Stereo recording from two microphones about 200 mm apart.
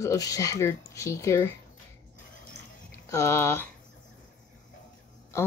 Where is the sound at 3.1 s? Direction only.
15° left (ahead or behind).